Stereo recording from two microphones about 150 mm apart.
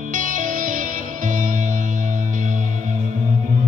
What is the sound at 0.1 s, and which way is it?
Music, 60° right (ahead or behind).